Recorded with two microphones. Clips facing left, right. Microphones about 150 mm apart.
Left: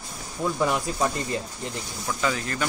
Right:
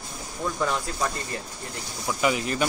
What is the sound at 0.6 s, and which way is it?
Speech, 15° left (ahead or behind).